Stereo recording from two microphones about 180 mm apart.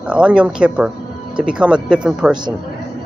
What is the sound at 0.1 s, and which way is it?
Speech, 5° right (ahead or behind).